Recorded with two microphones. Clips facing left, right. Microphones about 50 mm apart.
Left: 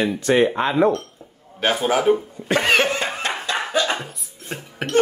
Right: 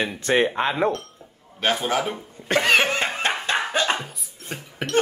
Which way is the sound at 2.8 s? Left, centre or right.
Right.